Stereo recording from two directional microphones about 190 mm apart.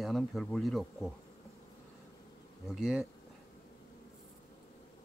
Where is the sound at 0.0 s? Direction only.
Centre (ahead or behind).